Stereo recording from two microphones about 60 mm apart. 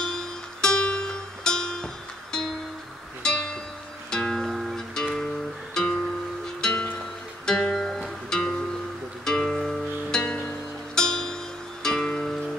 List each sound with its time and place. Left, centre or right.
0.0 s music: centre
3.2 s music: centre
4.5 s music: centre
4.9 s music: centre
6.6 s music: centre